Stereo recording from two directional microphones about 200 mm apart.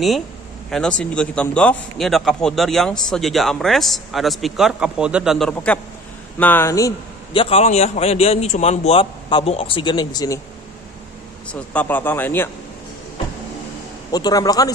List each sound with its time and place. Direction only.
0.7 s a man's voice: 5° left (ahead or behind)
7.3 s a man's voice: 30° left (ahead or behind)
11.7 s speech: 10° left (ahead or behind)
14.1 s a man's voice: 20° left (ahead or behind)